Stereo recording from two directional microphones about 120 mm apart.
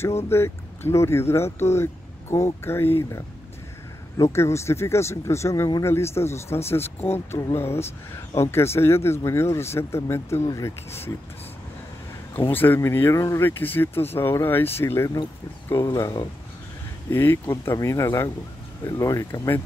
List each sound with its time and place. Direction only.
0.0 s speech: 20° left (ahead or behind)
12.4 s speech: 15° left (ahead or behind)